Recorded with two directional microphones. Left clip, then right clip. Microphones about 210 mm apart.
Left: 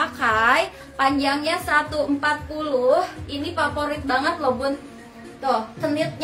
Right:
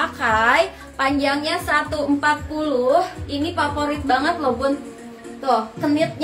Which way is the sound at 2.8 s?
15° left (ahead or behind).